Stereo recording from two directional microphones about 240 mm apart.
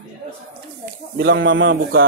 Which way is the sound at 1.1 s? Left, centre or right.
Right.